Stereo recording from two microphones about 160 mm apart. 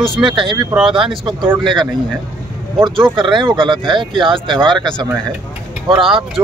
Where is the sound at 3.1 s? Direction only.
30° right (ahead or behind).